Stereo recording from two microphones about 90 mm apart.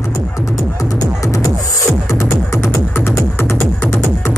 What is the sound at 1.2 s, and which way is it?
Music, 35° left (ahead or behind).